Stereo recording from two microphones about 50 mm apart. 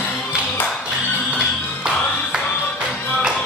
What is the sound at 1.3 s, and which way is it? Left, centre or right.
Music, centre.